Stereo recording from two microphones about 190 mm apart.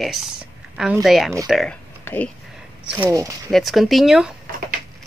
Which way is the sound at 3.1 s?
20° right (ahead or behind).